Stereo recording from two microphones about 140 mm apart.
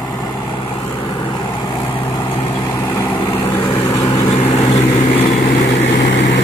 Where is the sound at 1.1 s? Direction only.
35° left (ahead or behind).